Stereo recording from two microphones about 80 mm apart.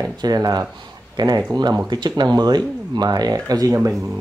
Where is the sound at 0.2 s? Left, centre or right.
Right.